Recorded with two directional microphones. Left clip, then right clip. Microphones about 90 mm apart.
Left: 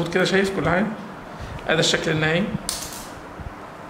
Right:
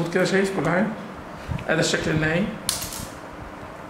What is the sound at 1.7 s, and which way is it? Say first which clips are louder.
Speech: left 2 dB; 25° left (ahead or behind).